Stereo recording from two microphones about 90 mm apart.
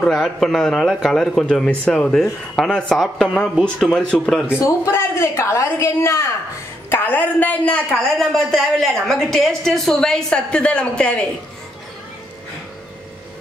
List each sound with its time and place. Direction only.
0.0 s a man's voice: centre (ahead or behind)
4.6 s a woman's voice: 30° left (ahead or behind)
6.9 s a man's voice: 20° left (ahead or behind)